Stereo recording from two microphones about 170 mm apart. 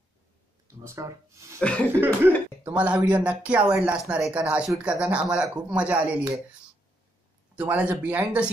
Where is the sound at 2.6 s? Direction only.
5° right (ahead or behind).